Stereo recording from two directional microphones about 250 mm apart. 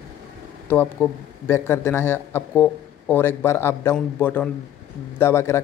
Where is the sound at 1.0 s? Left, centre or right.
Centre.